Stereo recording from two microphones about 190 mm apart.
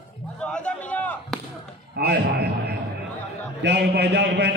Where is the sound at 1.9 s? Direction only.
55° right (ahead or behind).